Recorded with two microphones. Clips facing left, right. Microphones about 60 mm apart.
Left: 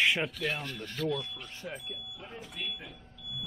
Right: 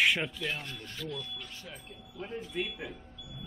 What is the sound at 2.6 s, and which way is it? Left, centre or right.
Speech, right.